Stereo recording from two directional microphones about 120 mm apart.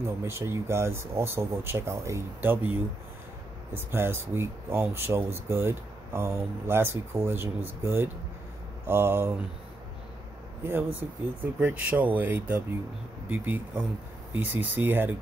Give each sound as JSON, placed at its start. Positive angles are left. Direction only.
{"t": 0.0, "sound": "speech", "side_deg": -20}
{"t": 10.6, "sound": "speech", "side_deg": -20}